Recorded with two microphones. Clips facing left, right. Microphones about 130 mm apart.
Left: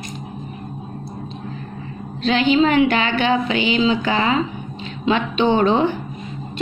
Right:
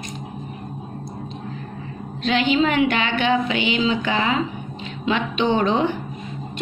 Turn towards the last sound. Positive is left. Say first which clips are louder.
# left 3 dB
turn(degrees=35)  # may be behind; listen again after turning